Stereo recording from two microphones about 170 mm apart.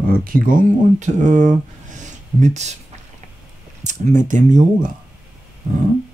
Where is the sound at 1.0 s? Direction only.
50° right (ahead or behind).